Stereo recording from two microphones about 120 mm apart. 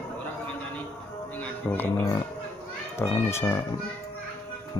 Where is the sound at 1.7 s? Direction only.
15° left (ahead or behind).